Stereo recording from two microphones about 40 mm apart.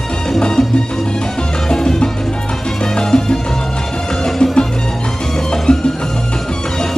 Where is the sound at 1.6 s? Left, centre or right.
Centre.